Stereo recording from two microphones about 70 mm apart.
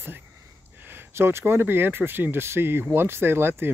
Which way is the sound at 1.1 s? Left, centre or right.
Right.